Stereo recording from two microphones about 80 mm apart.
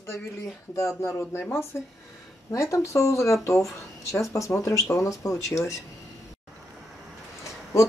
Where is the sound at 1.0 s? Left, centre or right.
Left.